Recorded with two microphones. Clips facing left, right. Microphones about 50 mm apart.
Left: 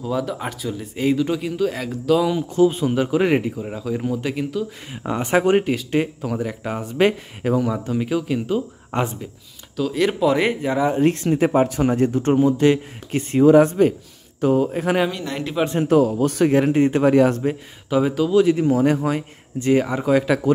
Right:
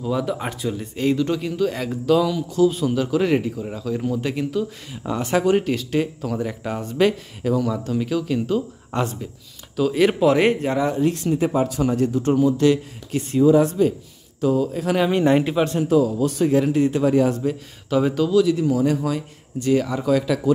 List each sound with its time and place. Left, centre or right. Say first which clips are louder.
0.0 s speech: right 1 dB; centre
0.9 s speech: left 1 dB; centre
2.2 s speech: left 2 dB; left
3.5 s speech: left 1 dB; centre
4.9 s speech: left 2 dB; left
5.7 s speech: left 1 dB; centre
7.0 s speech: left 1 dB; left
9.8 s speech: right 2 dB; centre
11.0 s speech: left 2 dB; left
15.0 s a man's voice: right 9 dB; right
15.8 s speech: left 4 dB; left
17.0 s a man's voice: left 4 dB; left
17.8 s speech: even; centre
18.3 s speech: left 3 dB; left